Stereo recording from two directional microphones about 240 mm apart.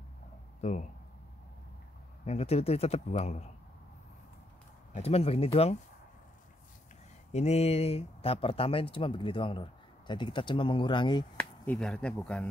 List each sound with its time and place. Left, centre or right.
0.6 s speech: left
2.2 s speech: left
4.9 s speech: left
7.3 s speech: left
11.6 s speech: centre